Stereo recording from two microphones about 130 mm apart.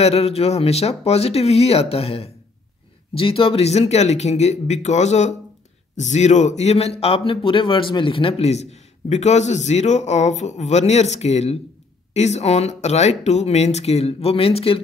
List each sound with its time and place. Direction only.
0.0 s speech: 50° left (ahead or behind)